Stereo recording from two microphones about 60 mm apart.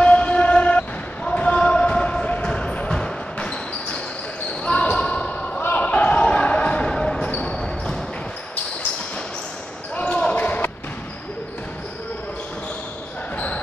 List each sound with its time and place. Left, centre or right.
0.0 s basketball bounce: left
5.6 s basketball bounce: left; by 8.0 s centre
9.9 s basketball bounce: left